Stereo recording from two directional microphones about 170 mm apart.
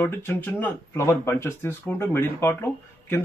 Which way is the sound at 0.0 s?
15° left (ahead or behind).